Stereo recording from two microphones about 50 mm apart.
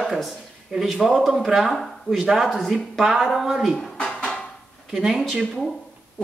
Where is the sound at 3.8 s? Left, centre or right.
Centre.